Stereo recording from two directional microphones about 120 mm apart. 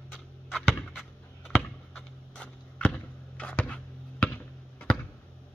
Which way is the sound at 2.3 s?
10° left (ahead or behind).